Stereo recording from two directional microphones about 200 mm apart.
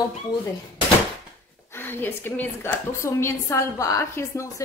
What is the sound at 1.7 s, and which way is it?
A woman's voice, 10° left (ahead or behind).